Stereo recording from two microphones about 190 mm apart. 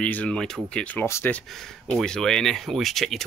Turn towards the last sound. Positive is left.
turn(degrees=0)  # may be behind; listen again after turning